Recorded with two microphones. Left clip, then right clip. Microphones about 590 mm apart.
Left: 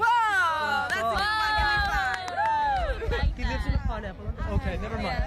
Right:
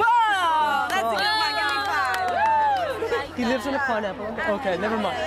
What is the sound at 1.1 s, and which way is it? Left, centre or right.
Run, left.